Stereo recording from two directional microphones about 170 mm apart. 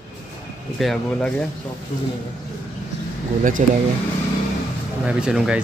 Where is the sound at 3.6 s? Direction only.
45° right (ahead or behind).